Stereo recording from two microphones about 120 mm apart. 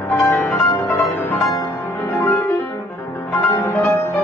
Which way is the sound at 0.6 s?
25° left (ahead or behind).